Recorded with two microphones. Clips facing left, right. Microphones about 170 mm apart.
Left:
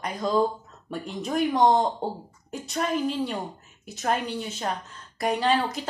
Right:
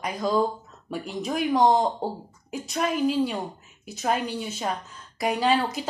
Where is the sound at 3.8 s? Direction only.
Centre (ahead or behind).